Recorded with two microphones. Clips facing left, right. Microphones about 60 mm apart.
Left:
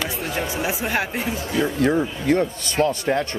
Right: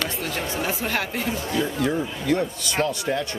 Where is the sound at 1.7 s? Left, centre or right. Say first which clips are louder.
Left 4 dB; left.